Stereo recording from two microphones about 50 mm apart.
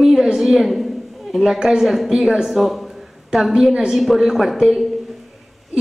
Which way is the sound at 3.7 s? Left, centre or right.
Centre.